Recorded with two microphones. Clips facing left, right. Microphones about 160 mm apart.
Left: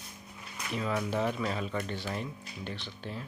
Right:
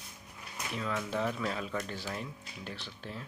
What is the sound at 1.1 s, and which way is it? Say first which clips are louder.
Speech: left 2 dB; 5° left (ahead or behind).